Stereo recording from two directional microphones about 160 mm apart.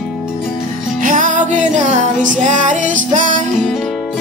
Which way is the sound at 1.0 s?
55° right (ahead or behind).